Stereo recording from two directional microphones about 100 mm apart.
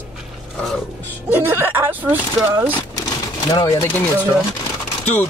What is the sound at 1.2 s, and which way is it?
Speech, 20° right (ahead or behind).